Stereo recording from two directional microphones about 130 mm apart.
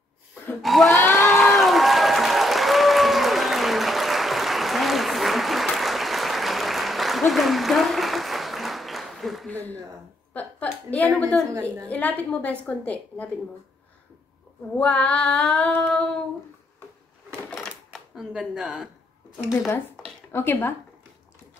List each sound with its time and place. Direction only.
0.6 s speech: centre (ahead or behind)
1.1 s applause: centre (ahead or behind)
10.3 s a sound: 10° left (ahead or behind)
11.6 s a woman's voice: 10° left (ahead or behind)
14.8 s a woman's voice: 10° left (ahead or behind)
17.6 s a sound: centre (ahead or behind)
20.2 s a woman's voice: 15° left (ahead or behind)